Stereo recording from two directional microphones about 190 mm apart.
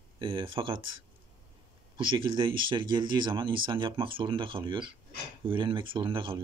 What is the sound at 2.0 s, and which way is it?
Speech, 25° right (ahead or behind).